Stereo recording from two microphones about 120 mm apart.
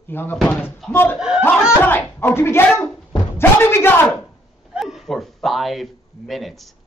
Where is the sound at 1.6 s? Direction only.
20° left (ahead or behind).